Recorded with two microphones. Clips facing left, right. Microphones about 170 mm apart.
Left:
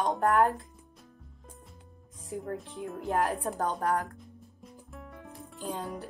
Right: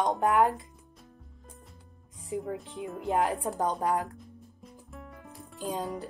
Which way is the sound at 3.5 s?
20° right (ahead or behind).